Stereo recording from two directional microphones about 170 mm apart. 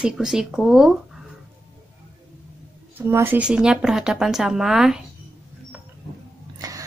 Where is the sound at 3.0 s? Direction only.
15° right (ahead or behind).